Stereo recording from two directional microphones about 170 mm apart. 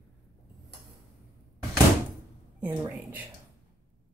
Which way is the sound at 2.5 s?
10° right (ahead or behind).